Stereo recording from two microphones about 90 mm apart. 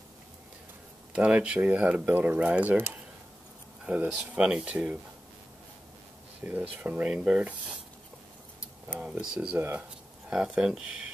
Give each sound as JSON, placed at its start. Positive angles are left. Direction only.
{"t": 1.1, "sound": "speech", "side_deg": -15}
{"t": 6.4, "sound": "speech", "side_deg": -15}
{"t": 9.0, "sound": "speech", "side_deg": -10}
{"t": 9.6, "sound": "speech", "side_deg": -25}
{"t": 10.3, "sound": "speech", "side_deg": -5}